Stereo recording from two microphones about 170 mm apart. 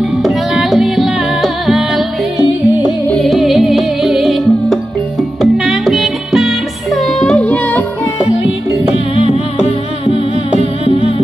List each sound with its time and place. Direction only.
0.2 s music: centre (ahead or behind)
3.1 s music: centre (ahead or behind)
9.3 s music: 35° left (ahead or behind)